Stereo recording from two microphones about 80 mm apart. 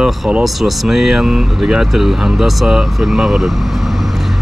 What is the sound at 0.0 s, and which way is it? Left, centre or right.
Speech, centre.